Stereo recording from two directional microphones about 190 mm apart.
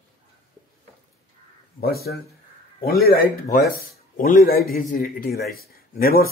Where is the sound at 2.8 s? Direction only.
55° left (ahead or behind).